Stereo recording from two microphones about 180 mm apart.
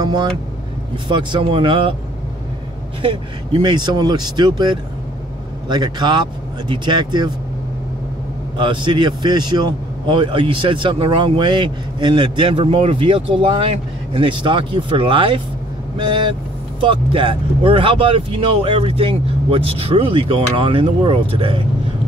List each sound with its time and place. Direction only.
0.0 s vehicle: 25° right (ahead or behind)
1.0 s speech: 25° right (ahead or behind)
3.0 s speech: 30° right (ahead or behind)
8.5 s speech: 25° right (ahead or behind)